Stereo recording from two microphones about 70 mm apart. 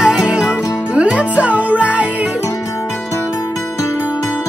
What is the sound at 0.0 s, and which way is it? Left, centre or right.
Music, centre.